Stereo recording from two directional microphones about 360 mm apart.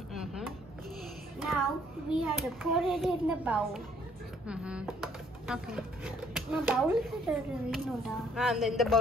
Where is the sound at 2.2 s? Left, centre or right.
Centre.